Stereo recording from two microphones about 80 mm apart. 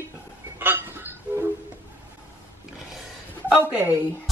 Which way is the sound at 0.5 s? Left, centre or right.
Right.